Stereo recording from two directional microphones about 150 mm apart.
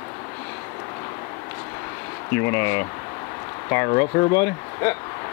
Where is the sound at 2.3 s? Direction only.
15° left (ahead or behind).